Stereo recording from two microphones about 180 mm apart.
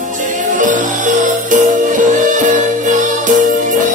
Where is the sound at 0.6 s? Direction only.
45° right (ahead or behind).